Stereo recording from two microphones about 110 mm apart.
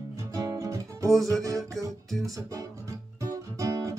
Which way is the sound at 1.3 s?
30° right (ahead or behind).